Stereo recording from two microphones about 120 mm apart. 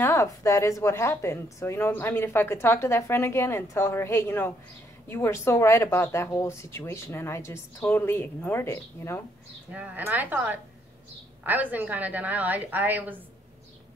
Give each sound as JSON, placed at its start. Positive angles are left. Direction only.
{"t": 0.0, "sound": "speech", "side_deg": 25}
{"t": 9.7, "sound": "a woman's voice", "side_deg": -10}